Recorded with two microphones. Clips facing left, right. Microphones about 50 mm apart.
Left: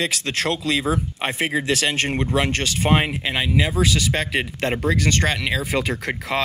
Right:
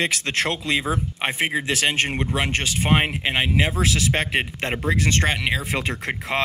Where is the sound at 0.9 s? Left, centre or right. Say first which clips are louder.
Left 1 dB; centre; by 4.4 s right.